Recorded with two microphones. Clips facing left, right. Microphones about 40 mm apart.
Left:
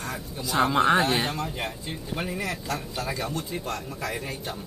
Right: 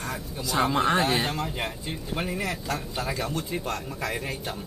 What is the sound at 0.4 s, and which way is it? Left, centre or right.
Speech, centre.